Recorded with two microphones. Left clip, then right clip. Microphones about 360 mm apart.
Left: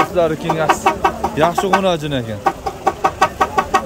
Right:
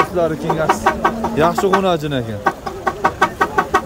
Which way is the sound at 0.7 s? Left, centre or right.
Left.